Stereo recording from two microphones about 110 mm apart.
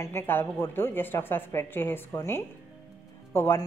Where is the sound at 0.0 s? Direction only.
20° left (ahead or behind).